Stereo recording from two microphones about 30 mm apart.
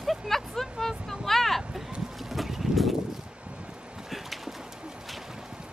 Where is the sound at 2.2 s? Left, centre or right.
Centre.